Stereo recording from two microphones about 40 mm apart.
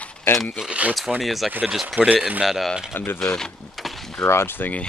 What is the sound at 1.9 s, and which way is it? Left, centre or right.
Speech, right.